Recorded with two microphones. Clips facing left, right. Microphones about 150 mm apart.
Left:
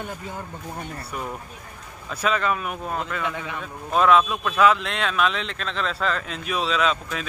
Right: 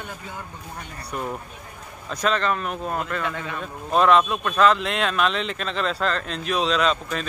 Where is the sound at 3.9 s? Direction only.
Centre (ahead or behind).